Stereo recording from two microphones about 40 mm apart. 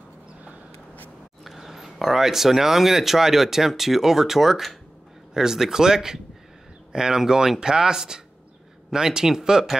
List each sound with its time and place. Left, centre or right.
1.4 s speech: centre